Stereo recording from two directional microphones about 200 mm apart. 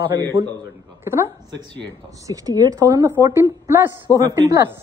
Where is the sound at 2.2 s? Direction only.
15° right (ahead or behind).